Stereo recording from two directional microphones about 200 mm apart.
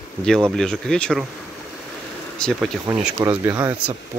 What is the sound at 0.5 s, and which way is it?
Speech, 5° left (ahead or behind).